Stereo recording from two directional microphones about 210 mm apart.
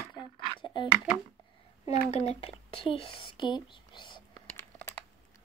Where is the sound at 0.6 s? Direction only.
20° left (ahead or behind).